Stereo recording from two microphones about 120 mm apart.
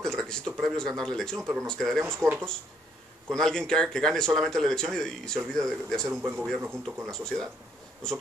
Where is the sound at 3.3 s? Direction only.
5° left (ahead or behind).